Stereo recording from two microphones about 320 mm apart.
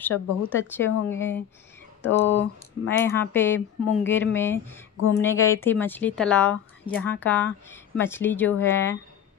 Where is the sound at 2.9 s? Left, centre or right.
Centre.